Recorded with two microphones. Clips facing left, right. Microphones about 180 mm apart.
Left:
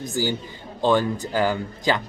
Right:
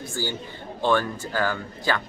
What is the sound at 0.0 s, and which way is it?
Speech, 15° left (ahead or behind).